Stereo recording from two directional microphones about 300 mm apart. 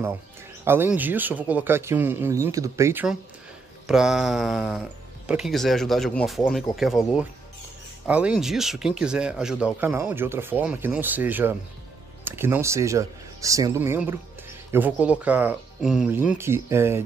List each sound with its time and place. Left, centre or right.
0.7 s speech: centre